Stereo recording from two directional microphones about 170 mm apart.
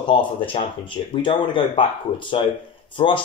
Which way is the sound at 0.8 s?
30° left (ahead or behind).